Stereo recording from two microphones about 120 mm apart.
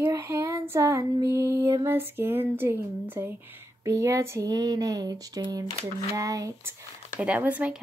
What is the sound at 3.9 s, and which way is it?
Speech, 25° right (ahead or behind).